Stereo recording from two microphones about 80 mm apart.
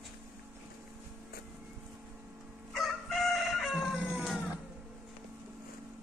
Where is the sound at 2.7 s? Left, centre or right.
Centre.